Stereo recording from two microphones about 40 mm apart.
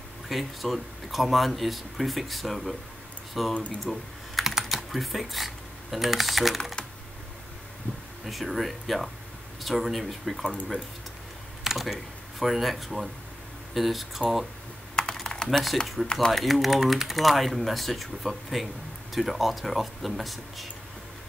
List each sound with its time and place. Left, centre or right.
0.3 s speech: centre
3.5 s speech: left
3.9 s typing: centre
6.6 s speech: centre
8.3 s speech: centre
11.6 s speech: centre
15.0 s computer keyboard: left
15.4 s speech: centre